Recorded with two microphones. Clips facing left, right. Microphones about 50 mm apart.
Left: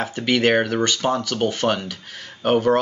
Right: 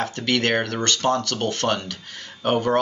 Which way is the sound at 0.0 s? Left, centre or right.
Centre.